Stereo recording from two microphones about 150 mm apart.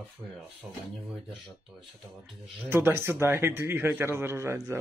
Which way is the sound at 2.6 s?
15° right (ahead or behind).